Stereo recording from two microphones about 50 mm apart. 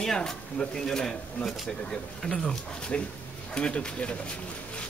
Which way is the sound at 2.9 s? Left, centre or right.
Left.